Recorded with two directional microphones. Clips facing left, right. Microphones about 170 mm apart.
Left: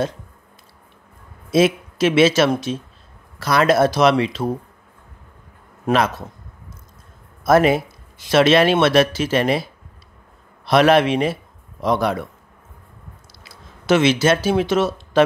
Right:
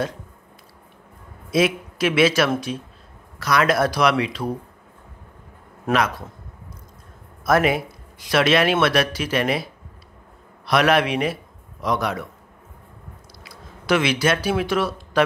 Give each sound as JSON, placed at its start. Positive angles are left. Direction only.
{"t": 1.5, "sound": "speech", "side_deg": 25}
{"t": 5.9, "sound": "speech", "side_deg": 25}
{"t": 7.4, "sound": "speech", "side_deg": 25}
{"t": 13.4, "sound": "speech", "side_deg": 25}